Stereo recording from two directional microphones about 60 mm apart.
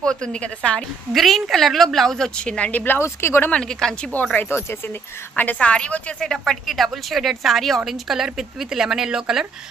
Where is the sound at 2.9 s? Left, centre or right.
Left.